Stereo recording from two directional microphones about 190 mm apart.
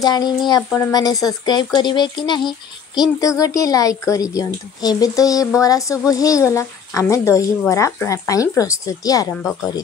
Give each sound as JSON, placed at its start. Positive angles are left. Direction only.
{"t": 0.0, "sound": "a woman's voice", "side_deg": 20}
{"t": 9.3, "sound": "speech", "side_deg": 5}